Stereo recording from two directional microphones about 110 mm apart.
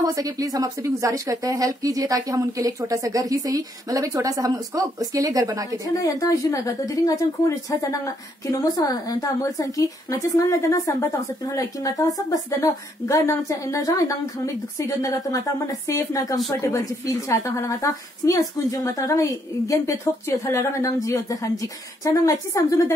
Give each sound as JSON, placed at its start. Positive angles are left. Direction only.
{"t": 0.0, "sound": "a woman's voice", "side_deg": -35}
{"t": 5.9, "sound": "a woman's voice", "side_deg": 30}